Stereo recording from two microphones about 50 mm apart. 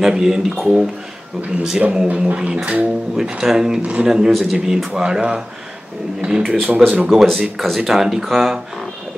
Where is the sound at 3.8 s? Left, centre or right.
Right.